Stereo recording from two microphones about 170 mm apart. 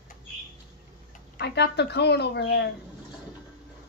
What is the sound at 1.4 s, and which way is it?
Speech, 80° left.